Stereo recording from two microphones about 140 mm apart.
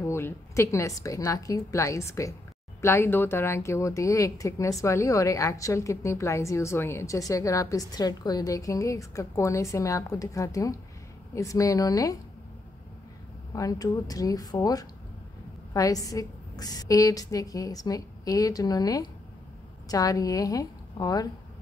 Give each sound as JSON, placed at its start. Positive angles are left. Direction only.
{"t": 0.0, "sound": "a woman's voice", "side_deg": 20}
{"t": 13.6, "sound": "a woman's voice", "side_deg": 25}